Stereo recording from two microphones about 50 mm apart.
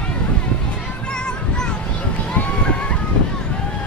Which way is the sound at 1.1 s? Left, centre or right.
Centre.